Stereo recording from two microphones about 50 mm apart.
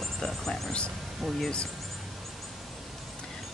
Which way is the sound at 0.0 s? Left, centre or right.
Centre.